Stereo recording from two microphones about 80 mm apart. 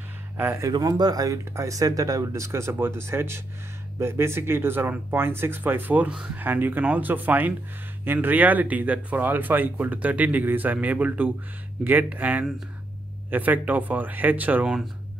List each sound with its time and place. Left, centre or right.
0.4 s speech: right
0.7 s speech: right
1.4 s speech: right